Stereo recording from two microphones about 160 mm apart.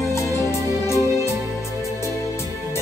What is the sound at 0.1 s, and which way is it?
Music, 15° left (ahead or behind).